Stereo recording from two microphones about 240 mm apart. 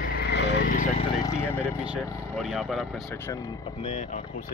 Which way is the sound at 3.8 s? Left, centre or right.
Left.